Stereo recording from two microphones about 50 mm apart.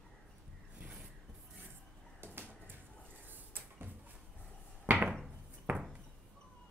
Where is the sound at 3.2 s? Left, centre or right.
Right.